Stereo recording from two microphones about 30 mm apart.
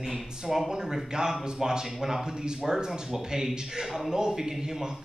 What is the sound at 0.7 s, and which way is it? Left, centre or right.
A man's voice, right.